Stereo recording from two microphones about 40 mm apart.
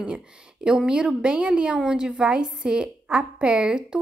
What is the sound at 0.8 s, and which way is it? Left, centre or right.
A woman's voice, right.